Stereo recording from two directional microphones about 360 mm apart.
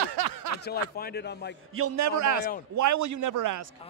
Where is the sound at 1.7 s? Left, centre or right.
Right.